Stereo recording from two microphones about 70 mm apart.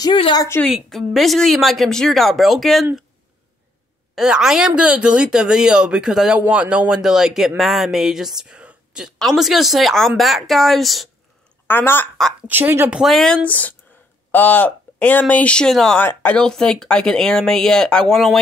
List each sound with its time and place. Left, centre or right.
0.0 s a woman's voice: left
0.7 s a woman's voice: centre
4.1 s speech: centre
9.2 s a woman's voice: centre
11.6 s speech: left
12.4 s speech: right
13.0 s a woman's voice: centre
13.5 s speech: left
15.7 s a woman's voice: centre
16.0 s speech: left
16.3 s speech: centre